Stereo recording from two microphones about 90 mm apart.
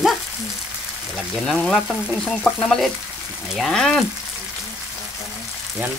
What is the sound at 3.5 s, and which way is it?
Speech, 5° left (ahead or behind).